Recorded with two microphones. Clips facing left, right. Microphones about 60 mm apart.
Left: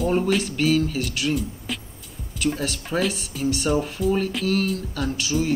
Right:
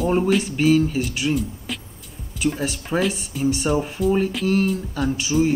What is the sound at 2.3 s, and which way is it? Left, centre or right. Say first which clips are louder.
Speech: right 2 dB; centre.